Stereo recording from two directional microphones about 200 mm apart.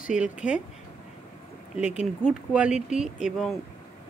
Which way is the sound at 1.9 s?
5° right (ahead or behind).